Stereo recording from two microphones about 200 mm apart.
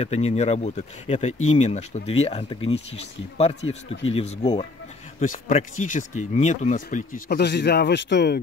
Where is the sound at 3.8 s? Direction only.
75° left (ahead or behind).